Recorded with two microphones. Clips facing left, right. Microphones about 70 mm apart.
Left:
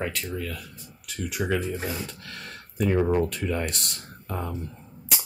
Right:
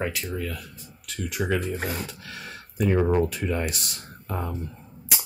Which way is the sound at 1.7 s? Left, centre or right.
Right.